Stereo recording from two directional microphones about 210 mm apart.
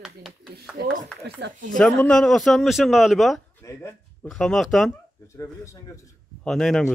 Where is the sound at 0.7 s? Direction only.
45° right (ahead or behind).